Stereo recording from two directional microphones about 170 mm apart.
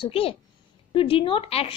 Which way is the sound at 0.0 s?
35° left (ahead or behind).